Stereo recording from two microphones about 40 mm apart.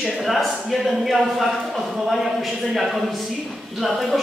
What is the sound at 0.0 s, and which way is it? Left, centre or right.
A man's voice, centre.